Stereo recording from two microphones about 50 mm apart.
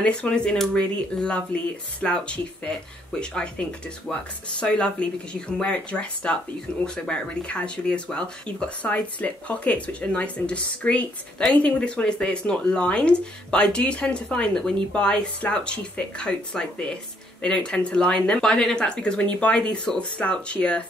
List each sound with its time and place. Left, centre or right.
0.0 s speech: left
8.8 s speech: left